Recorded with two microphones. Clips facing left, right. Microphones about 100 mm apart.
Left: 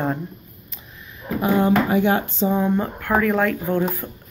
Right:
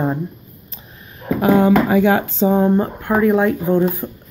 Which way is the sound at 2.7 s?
25° right (ahead or behind).